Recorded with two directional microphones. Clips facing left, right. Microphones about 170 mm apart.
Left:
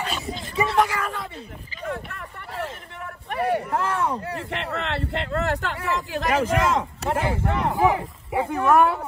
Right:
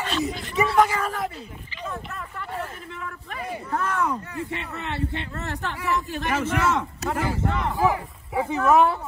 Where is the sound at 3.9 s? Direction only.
30° left (ahead or behind).